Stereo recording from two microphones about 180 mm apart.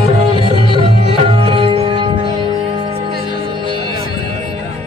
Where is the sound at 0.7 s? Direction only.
30° right (ahead or behind).